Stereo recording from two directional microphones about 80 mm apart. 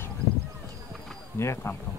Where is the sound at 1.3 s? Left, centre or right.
Left.